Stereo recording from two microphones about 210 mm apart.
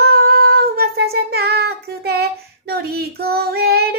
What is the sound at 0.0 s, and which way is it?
Child singing, 50° right (ahead or behind).